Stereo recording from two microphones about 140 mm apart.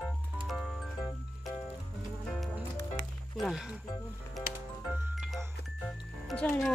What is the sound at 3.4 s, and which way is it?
Music, 5° right (ahead or behind).